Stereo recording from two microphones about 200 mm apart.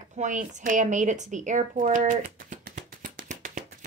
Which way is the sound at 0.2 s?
40° right (ahead or behind).